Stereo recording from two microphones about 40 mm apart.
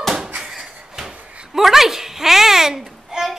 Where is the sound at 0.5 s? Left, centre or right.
Centre.